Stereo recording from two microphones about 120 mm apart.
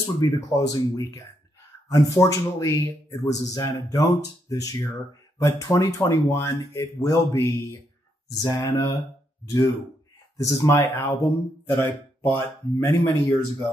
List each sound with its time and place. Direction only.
0.0 s speech: 30° left (ahead or behind)
10.3 s speech: 25° left (ahead or behind)